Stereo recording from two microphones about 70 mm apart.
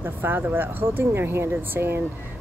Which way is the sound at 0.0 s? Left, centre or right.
Right.